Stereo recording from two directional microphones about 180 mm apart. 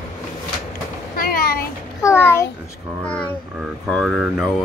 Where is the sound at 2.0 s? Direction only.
15° left (ahead or behind).